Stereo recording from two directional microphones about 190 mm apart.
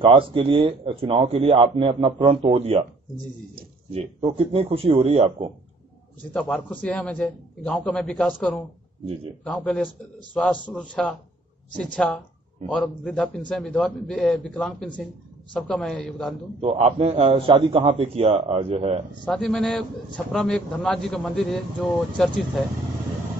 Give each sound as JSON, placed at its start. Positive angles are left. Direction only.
{"t": 0.0, "sound": "speech", "side_deg": -25}
{"t": 3.9, "sound": "speech", "side_deg": -30}
{"t": 6.3, "sound": "a man's voice", "side_deg": 5}
{"t": 16.6, "sound": "a man's voice", "side_deg": -35}
{"t": 19.2, "sound": "a man's voice", "side_deg": 5}